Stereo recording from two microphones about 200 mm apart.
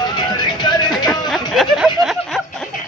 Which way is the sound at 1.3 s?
Centre (ahead or behind).